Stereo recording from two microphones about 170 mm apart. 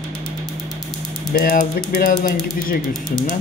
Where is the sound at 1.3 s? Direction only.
60° left (ahead or behind).